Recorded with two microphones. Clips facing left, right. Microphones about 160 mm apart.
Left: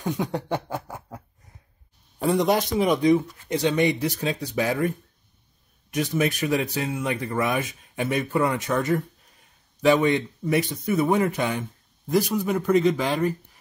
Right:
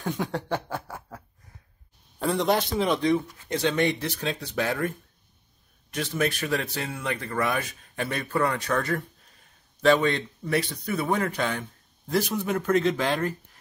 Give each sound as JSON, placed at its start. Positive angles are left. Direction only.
{"t": 0.0, "sound": "speech", "side_deg": 0}
{"t": 0.5, "sound": "snicker", "side_deg": 15}
{"t": 2.1, "sound": "speech", "side_deg": 5}
{"t": 5.9, "sound": "speech", "side_deg": 15}
{"t": 10.0, "sound": "speech", "side_deg": 15}
{"t": 12.3, "sound": "speech", "side_deg": 0}